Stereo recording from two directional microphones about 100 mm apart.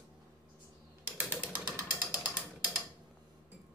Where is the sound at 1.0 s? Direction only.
20° right (ahead or behind).